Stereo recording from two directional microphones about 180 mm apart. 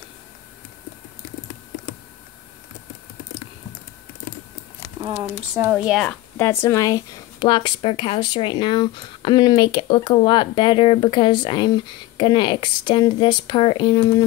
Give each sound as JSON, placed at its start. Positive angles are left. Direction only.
{"t": 5.6, "sound": "speech", "side_deg": -10}
{"t": 5.9, "sound": "speech", "side_deg": 10}